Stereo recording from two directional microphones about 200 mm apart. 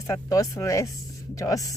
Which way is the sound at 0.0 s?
15° left (ahead or behind).